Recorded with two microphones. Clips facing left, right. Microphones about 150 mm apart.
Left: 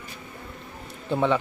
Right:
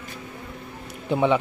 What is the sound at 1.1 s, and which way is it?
Speech, 15° right (ahead or behind).